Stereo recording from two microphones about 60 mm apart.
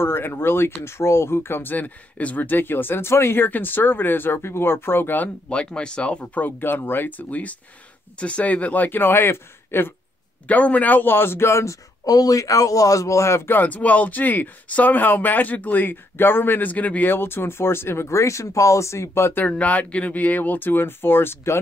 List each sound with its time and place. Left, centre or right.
0.0 s speech: left
5.5 s speech: centre
6.4 s speech: left
10.4 s a man's voice: left
13.5 s speech: left
19.4 s speech: left